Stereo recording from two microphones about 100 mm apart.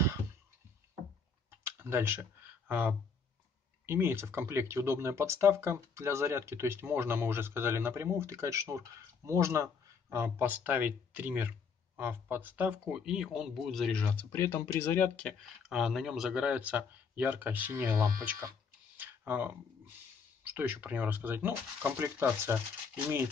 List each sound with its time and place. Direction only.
1.5 s typing: 25° right (ahead or behind)
2.7 s speech: 15° right (ahead or behind); by 13.9 s centre (ahead or behind)
14.3 s speech: 25° left (ahead or behind)
15.6 s speech: 5° right (ahead or behind)
18.9 s a sound: 20° right (ahead or behind)
20.4 s speech: 20° right (ahead or behind)